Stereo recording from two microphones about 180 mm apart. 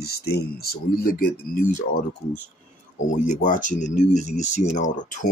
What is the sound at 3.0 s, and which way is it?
Speech, 45° left (ahead or behind).